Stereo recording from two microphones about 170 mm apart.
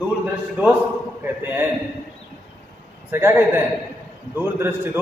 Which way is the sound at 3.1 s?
15° right (ahead or behind).